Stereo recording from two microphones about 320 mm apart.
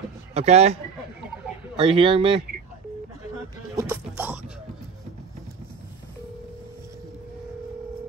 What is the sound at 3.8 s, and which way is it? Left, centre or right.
Music, centre.